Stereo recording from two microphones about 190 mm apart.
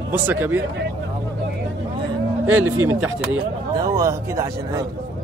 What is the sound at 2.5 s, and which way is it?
Speech, 10° right (ahead or behind).